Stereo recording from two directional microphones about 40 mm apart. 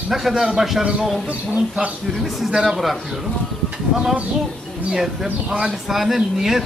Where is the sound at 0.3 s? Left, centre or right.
Centre.